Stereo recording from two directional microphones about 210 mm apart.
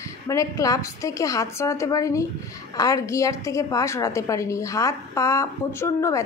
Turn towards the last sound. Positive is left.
turn(degrees=15)  # may be behind; listen again after turning